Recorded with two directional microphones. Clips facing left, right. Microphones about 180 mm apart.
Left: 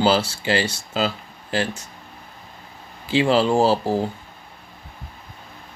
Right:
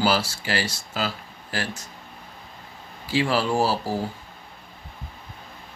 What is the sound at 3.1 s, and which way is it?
Speech, 25° left (ahead or behind).